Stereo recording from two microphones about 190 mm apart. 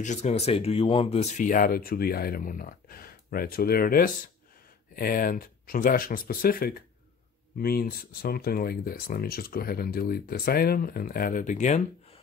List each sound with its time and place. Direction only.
0.0 s speech: 35° left (ahead or behind)